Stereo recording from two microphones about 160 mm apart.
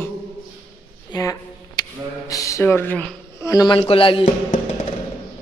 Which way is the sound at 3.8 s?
35° left (ahead or behind).